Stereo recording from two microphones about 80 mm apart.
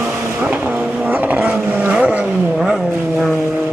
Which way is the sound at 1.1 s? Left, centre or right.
Right.